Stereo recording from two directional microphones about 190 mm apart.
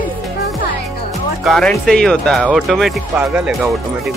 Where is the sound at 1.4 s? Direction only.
Centre (ahead or behind).